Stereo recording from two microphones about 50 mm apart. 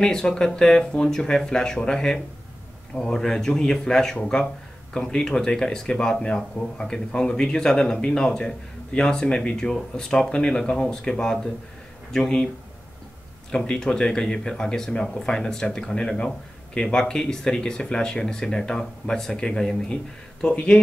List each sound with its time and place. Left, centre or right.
0.0 s speech: centre
13.7 s speech: centre